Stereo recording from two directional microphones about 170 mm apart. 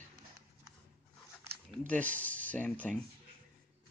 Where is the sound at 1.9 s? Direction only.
10° left (ahead or behind).